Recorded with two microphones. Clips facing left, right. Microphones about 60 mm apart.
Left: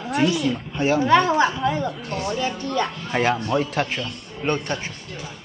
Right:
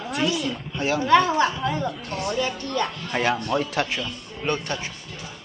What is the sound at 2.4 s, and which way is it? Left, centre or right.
A man's voice, left.